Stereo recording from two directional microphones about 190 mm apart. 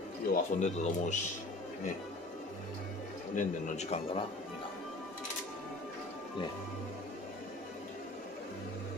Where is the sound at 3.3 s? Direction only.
35° left (ahead or behind).